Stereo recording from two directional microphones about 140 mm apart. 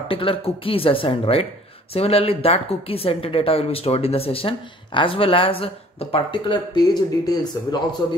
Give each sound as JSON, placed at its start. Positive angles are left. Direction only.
{"t": 0.1, "sound": "a man's voice", "side_deg": 40}